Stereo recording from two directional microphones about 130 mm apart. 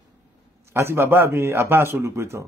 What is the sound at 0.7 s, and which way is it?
A man's voice, 20° right (ahead or behind).